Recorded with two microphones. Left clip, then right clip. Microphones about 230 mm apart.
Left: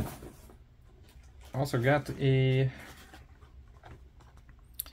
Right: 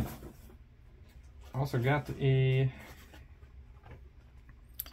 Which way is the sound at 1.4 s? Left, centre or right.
Left.